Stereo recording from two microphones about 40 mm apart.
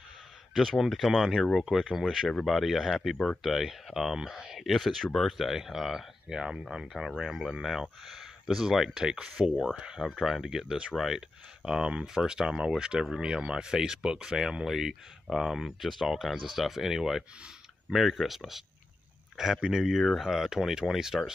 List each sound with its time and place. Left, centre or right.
0.6 s speech: centre; by 10.0 s right
10.0 s speech: centre
11.6 s speech: right
19.8 s speech: centre